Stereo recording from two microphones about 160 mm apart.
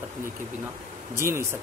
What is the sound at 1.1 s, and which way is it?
Speech, 15° right (ahead or behind).